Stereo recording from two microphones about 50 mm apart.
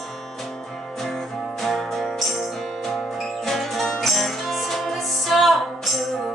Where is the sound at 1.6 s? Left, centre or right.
Centre.